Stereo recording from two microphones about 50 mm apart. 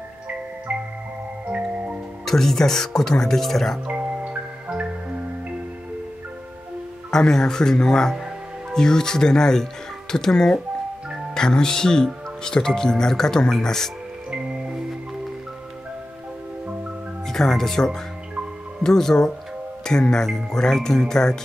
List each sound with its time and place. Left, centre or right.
1.5 s music: right
2.2 s speech: centre
3.8 s glockenspiel: right
7.1 s speech: centre
17.3 s speech: centre